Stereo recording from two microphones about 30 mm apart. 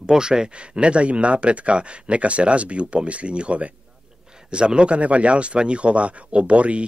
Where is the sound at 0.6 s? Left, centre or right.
Right.